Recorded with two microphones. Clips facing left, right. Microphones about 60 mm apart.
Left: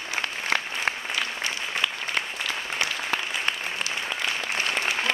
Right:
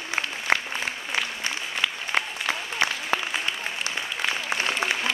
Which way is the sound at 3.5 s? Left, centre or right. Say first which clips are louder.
Left 2 dB; left.